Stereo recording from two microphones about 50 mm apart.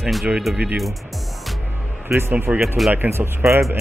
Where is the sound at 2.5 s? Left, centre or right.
Right.